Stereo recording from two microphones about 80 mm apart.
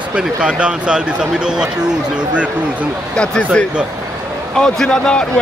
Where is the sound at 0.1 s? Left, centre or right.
Centre.